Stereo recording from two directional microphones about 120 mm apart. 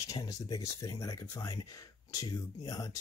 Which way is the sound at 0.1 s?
30° left (ahead or behind).